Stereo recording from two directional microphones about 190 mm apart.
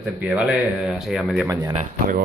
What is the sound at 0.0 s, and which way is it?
Speech, 5° right (ahead or behind).